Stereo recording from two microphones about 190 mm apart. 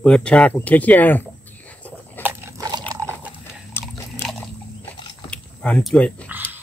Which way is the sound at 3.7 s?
10° left (ahead or behind).